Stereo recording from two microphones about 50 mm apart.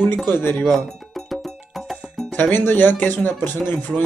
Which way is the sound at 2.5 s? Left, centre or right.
Left.